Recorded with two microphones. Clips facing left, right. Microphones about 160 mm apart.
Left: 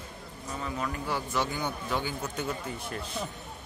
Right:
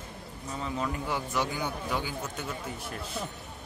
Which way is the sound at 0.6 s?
20° right (ahead or behind).